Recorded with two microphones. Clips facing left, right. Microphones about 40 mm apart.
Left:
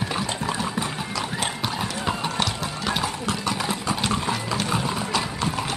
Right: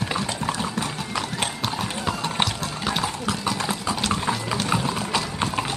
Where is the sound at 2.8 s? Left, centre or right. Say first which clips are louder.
Even; centre.